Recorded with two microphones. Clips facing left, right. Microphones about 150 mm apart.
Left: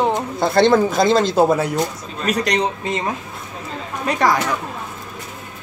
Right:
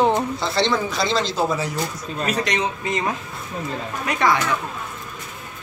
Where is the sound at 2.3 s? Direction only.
35° left (ahead or behind).